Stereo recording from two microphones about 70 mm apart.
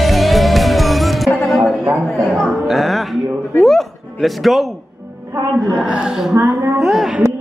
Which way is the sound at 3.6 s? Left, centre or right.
Centre.